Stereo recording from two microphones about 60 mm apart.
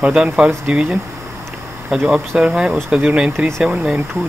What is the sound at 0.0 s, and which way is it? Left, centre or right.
Speech, centre.